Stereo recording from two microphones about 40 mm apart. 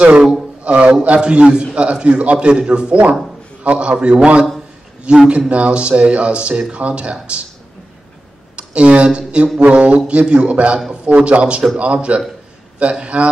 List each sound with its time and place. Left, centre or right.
0.7 s a man's voice: right
8.5 s speech: right